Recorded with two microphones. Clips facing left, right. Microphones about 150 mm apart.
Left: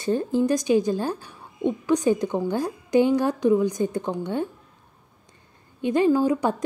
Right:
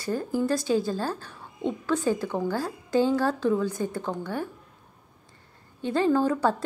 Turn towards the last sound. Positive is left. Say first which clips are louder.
# left 2 dB
turn(degrees=15)  # may be behind; listen again after turning